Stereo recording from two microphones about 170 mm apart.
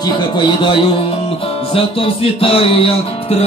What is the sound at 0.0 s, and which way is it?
Speech, 30° left (ahead or behind).